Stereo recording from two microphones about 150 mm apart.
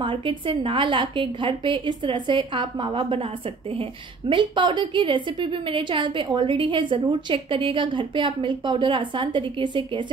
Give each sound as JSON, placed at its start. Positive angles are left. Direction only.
{"t": 0.0, "sound": "a woman's voice", "side_deg": -35}
{"t": 4.3, "sound": "a woman's voice", "side_deg": -35}